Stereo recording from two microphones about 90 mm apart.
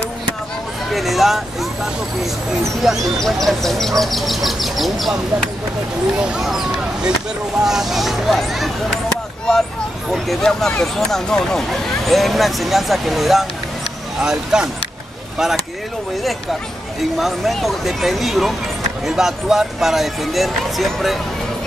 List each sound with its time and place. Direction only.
0.9 s speech: centre (ahead or behind)
2.8 s speech: centre (ahead or behind)
17.2 s speech: centre (ahead or behind)